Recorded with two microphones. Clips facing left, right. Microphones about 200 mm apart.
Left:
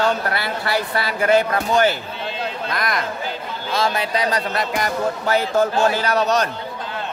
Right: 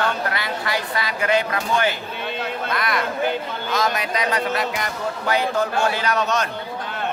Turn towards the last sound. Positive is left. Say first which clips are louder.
# left 3 dB
turn(degrees=40)  # may be behind; listen again after turning